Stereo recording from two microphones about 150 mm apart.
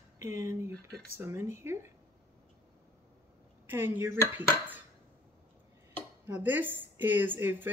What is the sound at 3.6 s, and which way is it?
Speech, 15° right (ahead or behind).